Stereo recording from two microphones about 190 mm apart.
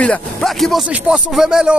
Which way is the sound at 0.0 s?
5° left (ahead or behind).